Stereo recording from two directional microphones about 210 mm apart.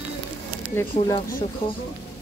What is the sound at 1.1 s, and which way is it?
Speech, 25° left (ahead or behind).